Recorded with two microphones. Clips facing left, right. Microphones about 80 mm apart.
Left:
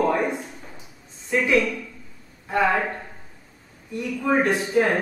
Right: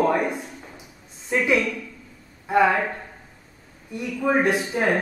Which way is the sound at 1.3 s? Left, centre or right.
Centre.